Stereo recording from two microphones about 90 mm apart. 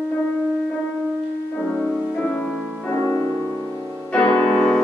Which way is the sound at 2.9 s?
30° left (ahead or behind).